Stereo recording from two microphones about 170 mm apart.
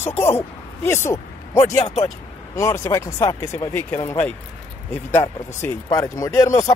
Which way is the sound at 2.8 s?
20° left (ahead or behind).